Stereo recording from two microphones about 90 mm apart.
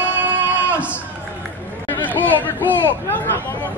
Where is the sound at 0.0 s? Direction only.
20° right (ahead or behind).